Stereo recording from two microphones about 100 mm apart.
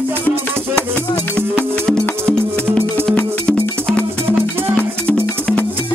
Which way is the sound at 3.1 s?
15° left (ahead or behind).